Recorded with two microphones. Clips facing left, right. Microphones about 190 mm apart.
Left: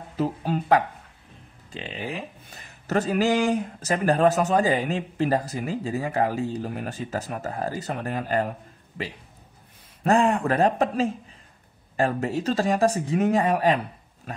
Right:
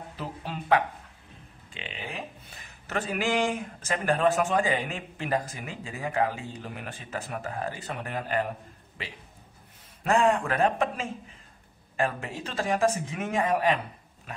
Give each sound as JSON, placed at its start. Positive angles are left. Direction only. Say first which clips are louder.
{"t": 0.2, "sound": "speech", "louder": "left 11 dB", "side_deg": 45}
{"t": 10.0, "sound": "speech", "louder": "left 3 dB", "side_deg": 35}